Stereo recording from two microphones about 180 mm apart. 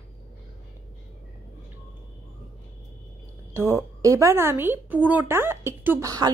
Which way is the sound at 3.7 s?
15° right (ahead or behind).